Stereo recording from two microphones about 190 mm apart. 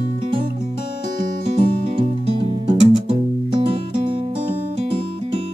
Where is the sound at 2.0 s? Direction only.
30° right (ahead or behind).